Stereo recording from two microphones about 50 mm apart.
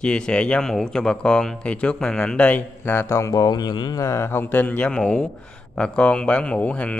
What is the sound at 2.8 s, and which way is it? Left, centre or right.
Speech, left.